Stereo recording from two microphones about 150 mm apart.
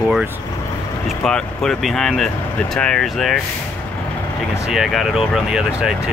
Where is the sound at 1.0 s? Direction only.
5° left (ahead or behind).